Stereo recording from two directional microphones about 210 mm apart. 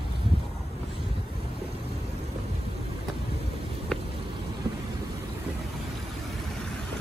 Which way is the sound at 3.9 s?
5° left (ahead or behind).